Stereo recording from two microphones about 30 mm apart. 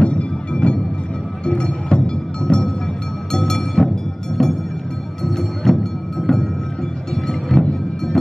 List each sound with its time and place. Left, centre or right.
0.0 s a sound: left
1.4 s music: left
3.3 s train: centre
5.2 s music: centre